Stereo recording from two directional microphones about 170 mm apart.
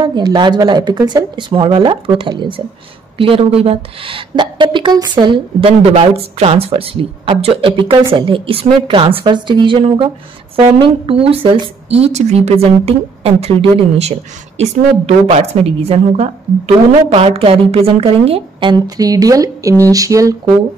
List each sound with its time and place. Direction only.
0.0 s a woman's voice: 25° right (ahead or behind)